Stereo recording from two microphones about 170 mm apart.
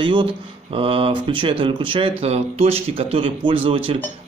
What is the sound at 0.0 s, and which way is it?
Speech, 30° right (ahead or behind).